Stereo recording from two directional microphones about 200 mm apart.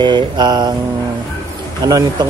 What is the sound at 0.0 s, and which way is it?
Speech, 20° right (ahead or behind).